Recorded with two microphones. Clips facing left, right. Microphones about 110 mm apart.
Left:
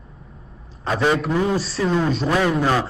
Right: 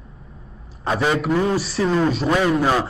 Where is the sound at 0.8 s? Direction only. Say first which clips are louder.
Even; 5° right (ahead or behind).